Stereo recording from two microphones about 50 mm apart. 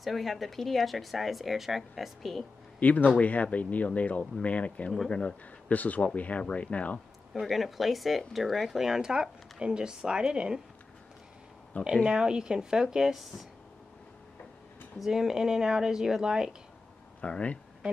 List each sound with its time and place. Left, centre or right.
0.0 s speech: centre
2.8 s speech: left
7.3 s speech: centre
12.0 s speech: centre
15.0 s speech: centre
17.2 s speech: left